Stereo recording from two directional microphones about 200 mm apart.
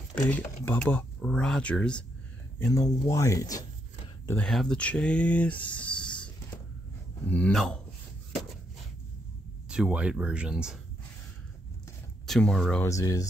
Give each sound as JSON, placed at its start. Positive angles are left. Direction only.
{"t": 0.7, "sound": "speech", "side_deg": 10}
{"t": 2.6, "sound": "speech", "side_deg": 15}
{"t": 4.3, "sound": "speech", "side_deg": 5}
{"t": 9.7, "sound": "speech", "side_deg": -5}
{"t": 12.3, "sound": "speech", "side_deg": 5}
{"t": 12.8, "sound": "speech", "side_deg": 15}